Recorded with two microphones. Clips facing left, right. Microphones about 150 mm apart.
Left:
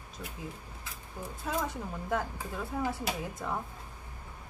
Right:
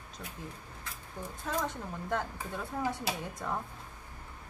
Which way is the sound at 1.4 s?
5° left (ahead or behind).